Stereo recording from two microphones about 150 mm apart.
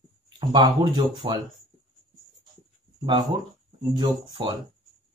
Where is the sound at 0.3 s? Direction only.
30° right (ahead or behind).